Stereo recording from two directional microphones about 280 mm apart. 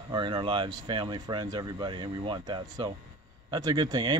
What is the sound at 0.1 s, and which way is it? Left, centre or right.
Speech, centre.